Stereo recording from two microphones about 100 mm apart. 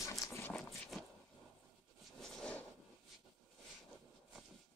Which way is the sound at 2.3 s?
10° left (ahead or behind).